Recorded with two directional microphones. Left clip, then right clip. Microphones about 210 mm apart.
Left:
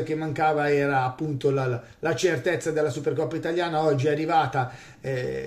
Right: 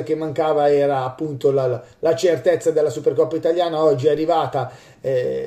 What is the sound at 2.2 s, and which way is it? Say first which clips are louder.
A man's voice: right 7 dB; centre (ahead or behind).